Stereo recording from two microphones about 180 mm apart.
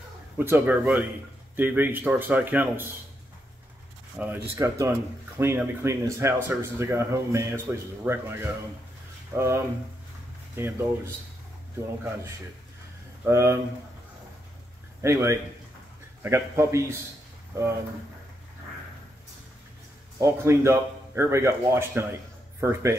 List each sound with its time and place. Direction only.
0.4 s speech: 10° right (ahead or behind)
4.2 s speech: 10° right (ahead or behind)
13.2 s speech: 15° right (ahead or behind)
15.0 s speech: 15° right (ahead or behind)
20.2 s speech: 15° right (ahead or behind)